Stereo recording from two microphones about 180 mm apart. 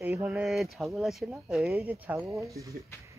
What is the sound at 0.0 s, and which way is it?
Speech, 10° right (ahead or behind).